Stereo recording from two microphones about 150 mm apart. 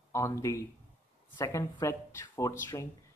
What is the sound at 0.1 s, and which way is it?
Speech, 20° left (ahead or behind).